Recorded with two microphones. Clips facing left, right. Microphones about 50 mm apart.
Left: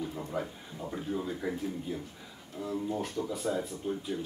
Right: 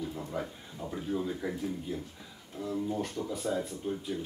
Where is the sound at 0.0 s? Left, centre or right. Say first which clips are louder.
Left 1 dB; centre.